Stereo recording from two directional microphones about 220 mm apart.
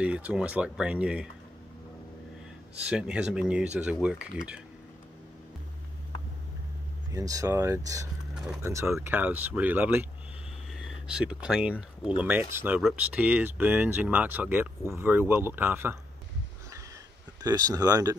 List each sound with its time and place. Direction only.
0.0 s speech: 5° right (ahead or behind)
2.8 s speech: 5° right (ahead or behind)
7.1 s speech: 15° right (ahead or behind)
11.1 s speech: 5° right (ahead or behind)
17.4 s speech: 15° right (ahead or behind)